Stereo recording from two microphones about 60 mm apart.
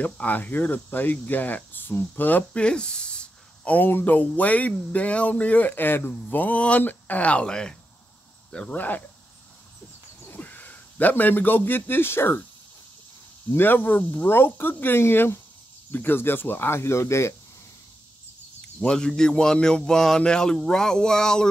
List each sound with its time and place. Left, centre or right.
0.0 s speech: left
2.6 s a sound: centre
3.7 s speech: left; by 8.7 s centre
8.7 s speech: left
10.2 s a man's voice: left
13.5 s speech: left
18.8 s speech: centre